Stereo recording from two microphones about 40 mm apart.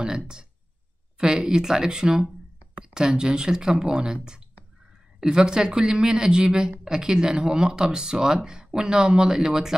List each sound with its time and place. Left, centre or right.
1.1 s speech: right